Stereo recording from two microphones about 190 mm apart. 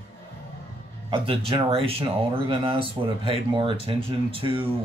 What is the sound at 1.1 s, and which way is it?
Speech, 30° right (ahead or behind).